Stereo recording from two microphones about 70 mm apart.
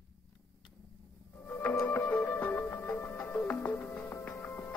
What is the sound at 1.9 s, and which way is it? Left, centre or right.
Music, left.